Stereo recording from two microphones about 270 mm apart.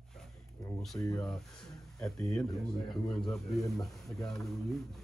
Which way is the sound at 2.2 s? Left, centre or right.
Centre.